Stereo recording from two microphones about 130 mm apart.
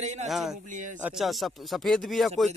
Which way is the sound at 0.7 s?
80° right.